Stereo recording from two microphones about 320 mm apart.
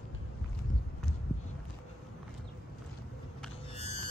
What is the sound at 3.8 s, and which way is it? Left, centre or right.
Music, centre.